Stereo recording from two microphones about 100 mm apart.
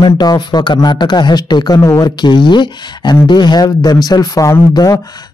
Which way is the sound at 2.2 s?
50° left (ahead or behind).